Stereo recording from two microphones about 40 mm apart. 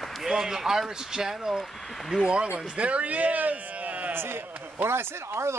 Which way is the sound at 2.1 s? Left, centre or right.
Right.